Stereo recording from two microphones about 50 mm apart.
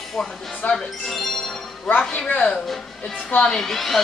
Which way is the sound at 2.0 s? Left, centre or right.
Left.